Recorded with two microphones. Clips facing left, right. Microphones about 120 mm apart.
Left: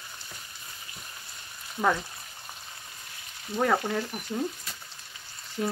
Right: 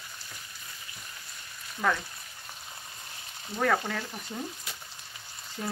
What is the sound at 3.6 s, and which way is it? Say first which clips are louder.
Frying: left 2 dB; 15° left (ahead or behind).